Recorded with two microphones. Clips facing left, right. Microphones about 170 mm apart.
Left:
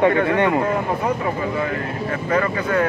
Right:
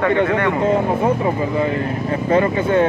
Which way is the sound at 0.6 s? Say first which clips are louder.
Right 5 dB; 25° right (ahead or behind).